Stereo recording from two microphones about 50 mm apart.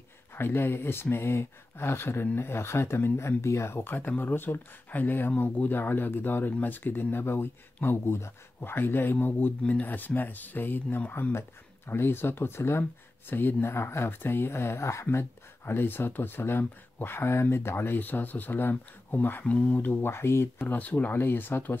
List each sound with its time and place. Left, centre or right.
0.4 s speech: left
3.8 s speech: left
9.6 s speech: left
11.9 s speech: left
13.3 s speech: left
13.7 s speech: left
17.9 s speech: left
19.4 s speech: left
20.6 s speech: left